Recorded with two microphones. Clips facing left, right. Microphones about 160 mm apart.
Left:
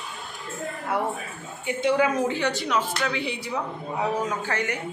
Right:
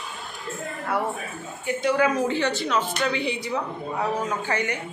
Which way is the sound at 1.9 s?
10° left (ahead or behind).